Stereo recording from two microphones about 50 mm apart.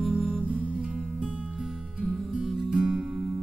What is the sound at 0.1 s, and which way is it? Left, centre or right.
Music, right.